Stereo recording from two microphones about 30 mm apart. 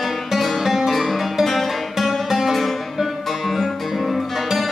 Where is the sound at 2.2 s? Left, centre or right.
Centre.